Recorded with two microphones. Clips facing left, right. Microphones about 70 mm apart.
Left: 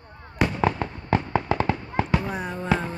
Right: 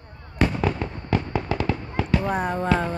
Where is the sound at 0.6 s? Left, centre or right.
Left.